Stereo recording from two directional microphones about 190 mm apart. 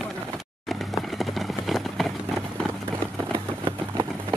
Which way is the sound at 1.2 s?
Centre (ahead or behind).